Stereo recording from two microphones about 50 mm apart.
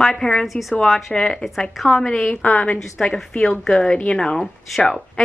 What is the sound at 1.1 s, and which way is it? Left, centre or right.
A woman's voice, centre.